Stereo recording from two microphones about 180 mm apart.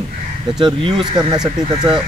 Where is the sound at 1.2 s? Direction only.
20° right (ahead or behind).